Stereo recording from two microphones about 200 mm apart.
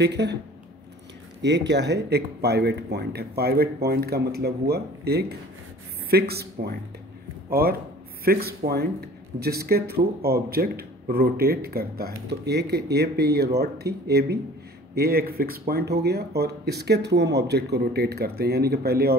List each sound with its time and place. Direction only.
0.0 s speech: 60° right (ahead or behind)
1.4 s a man's voice: 60° right (ahead or behind)